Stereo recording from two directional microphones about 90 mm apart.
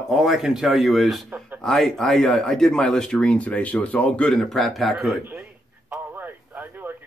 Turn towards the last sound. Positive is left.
turn(degrees=-20)  # may be behind; listen again after turning